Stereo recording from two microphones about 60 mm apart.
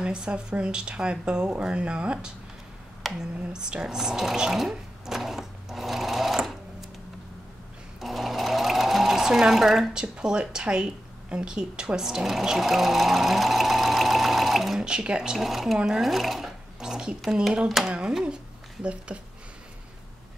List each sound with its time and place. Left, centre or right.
0.0 s speech: centre
3.0 s a sound: centre
3.5 s a sound: centre
8.0 s sewing machine: centre
14.9 s speech: centre
18.2 s speech: centre